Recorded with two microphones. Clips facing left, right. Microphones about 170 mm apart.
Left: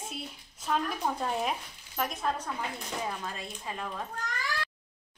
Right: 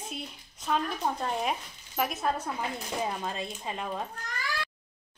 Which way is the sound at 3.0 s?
25° right (ahead or behind).